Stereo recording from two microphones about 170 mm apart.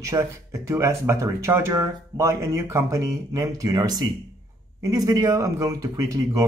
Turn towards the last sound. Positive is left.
turn(degrees=-20)  # may be behind; listen again after turning